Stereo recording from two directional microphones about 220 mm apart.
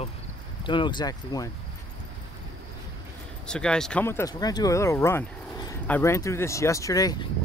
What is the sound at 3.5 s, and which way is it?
Speech, 5° left (ahead or behind).